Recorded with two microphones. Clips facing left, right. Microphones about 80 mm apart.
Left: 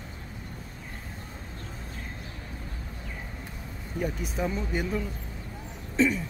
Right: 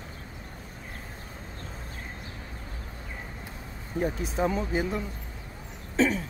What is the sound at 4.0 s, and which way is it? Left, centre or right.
Speech, right.